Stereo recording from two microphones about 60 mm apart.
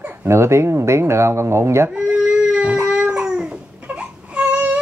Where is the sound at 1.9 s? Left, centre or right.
Centre.